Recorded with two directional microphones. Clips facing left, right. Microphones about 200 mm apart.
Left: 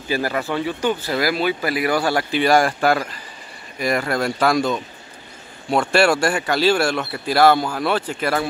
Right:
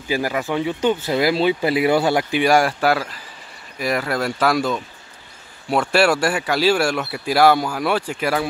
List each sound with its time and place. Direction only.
0.1 s speech: 15° right (ahead or behind)